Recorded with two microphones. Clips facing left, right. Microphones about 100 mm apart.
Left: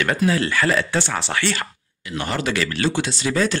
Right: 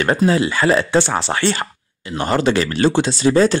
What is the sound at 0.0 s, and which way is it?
Speech, 30° right (ahead or behind).